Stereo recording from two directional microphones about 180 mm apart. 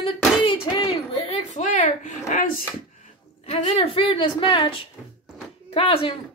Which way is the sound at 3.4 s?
35° left (ahead or behind).